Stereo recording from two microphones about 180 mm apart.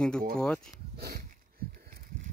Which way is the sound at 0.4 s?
5° left (ahead or behind).